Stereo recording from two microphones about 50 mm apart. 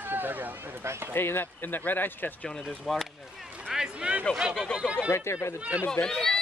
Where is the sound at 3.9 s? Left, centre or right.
Right.